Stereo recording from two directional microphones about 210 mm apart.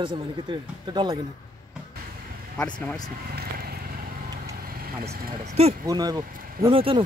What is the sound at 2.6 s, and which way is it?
Speech, 5° left (ahead or behind).